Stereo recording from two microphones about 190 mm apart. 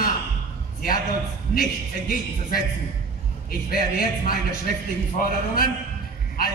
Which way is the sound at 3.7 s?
50° left (ahead or behind).